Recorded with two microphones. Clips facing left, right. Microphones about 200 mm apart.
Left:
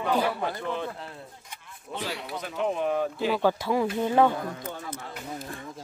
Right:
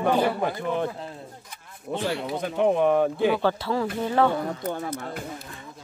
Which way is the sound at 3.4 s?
15° left (ahead or behind).